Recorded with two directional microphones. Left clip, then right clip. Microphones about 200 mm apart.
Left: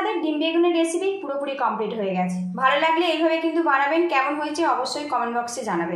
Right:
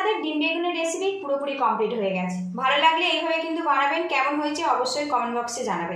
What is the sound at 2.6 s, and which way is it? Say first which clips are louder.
A woman's voice: left 1 dB; 30° left (ahead or behind).